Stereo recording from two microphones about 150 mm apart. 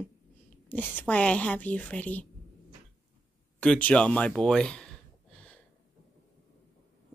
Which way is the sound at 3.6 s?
10° left (ahead or behind).